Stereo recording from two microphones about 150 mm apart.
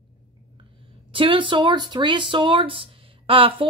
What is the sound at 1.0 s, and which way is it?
A woman's voice, 35° right (ahead or behind).